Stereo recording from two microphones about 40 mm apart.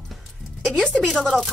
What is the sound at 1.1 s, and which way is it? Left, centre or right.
Speech, centre.